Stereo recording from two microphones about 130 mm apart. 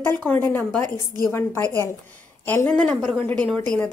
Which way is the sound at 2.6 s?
10° left (ahead or behind).